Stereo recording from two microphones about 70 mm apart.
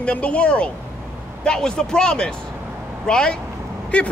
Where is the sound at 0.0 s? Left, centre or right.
Centre.